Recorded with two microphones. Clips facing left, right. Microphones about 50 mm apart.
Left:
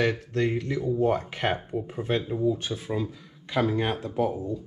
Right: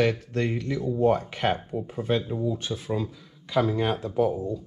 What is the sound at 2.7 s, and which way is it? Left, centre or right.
Speech, centre.